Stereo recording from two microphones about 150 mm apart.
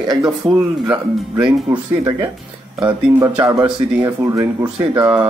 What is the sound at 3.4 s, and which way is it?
Speech, 30° right (ahead or behind).